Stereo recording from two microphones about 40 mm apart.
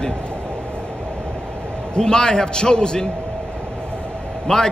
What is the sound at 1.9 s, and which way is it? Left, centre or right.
A man's voice, centre.